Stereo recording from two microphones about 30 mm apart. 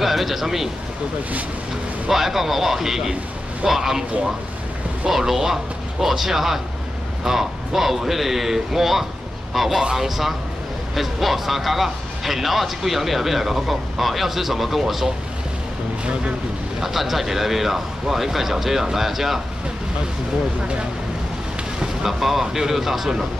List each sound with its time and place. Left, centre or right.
0.0 s speech: centre
2.0 s speech: centre
5.1 s speech: centre
16.8 s speech: centre
22.0 s speech: centre